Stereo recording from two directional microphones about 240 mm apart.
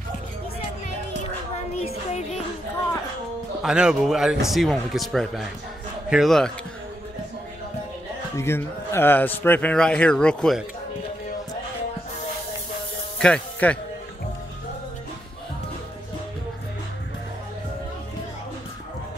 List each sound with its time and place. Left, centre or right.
1.8 s music: left
3.6 s speech: centre
8.4 s speech: centre
13.2 s speech: centre